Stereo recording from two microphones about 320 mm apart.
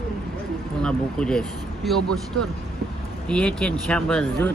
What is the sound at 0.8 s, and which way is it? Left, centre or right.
Speech, centre.